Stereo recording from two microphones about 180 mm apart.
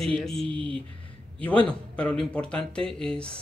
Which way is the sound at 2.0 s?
5° left (ahead or behind).